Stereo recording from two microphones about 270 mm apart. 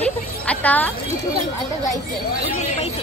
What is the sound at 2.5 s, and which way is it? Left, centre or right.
Speech, left.